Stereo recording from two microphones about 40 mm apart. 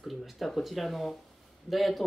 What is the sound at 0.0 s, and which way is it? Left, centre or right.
Speech, centre.